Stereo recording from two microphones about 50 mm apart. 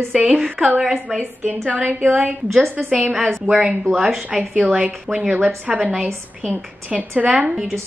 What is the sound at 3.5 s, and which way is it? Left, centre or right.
Speech, left.